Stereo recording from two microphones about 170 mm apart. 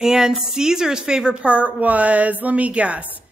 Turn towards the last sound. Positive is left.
turn(degrees=-10)  # may be behind; listen again after turning